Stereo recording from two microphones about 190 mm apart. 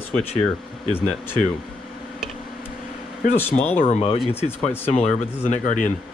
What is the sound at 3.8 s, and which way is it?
Speech, 30° left (ahead or behind).